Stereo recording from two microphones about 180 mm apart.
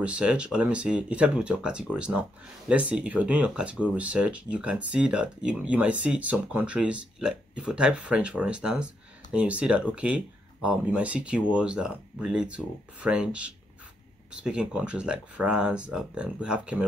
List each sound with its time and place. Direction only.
0.0 s speech: 5° right (ahead or behind)